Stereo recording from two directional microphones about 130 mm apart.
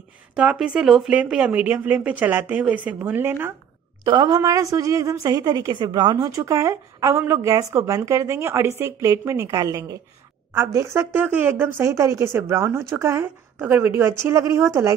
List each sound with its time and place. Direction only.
0.4 s speech: 10° right (ahead or behind)
4.0 s speech: 35° right (ahead or behind)